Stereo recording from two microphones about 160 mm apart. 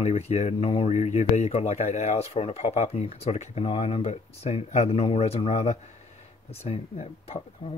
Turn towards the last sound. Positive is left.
turn(degrees=35)  # may be behind; listen again after turning